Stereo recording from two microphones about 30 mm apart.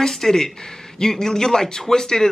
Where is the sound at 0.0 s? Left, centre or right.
Centre.